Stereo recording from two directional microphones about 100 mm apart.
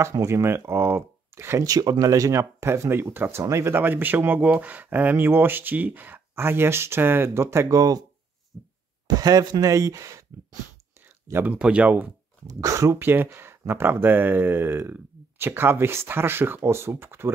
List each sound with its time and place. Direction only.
0.0 s speech: 30° right (ahead or behind)
8.5 s heart murmur: 10° right (ahead or behind)
9.0 s speech: 40° right (ahead or behind)
11.1 s a sound: 25° right (ahead or behind)
11.5 s speech: 10° right (ahead or behind)
12.4 s speech: 35° right (ahead or behind)